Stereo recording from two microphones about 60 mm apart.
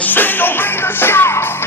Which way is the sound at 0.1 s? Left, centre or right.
Left.